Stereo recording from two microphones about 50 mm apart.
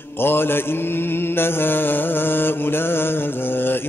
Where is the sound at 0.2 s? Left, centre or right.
Left.